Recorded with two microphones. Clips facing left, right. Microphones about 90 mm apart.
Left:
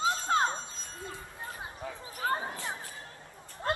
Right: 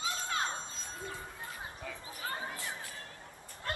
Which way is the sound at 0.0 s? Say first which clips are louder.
Left 8 dB; 35° left (ahead or behind).